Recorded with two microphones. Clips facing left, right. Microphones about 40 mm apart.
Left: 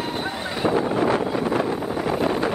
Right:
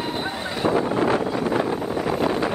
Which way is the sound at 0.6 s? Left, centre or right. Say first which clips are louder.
Even; centre.